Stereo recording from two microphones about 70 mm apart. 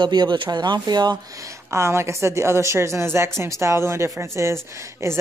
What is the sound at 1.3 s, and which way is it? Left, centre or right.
A woman's voice, right.